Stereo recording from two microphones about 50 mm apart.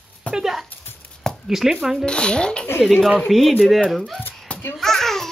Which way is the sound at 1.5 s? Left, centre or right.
Centre.